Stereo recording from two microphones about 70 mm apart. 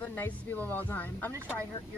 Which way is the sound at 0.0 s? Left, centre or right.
Left.